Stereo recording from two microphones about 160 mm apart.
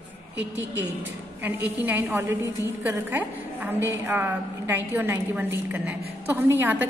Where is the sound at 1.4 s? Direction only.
10° right (ahead or behind).